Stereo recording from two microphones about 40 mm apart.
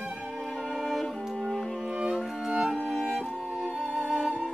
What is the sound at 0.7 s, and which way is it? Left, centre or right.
Music, centre.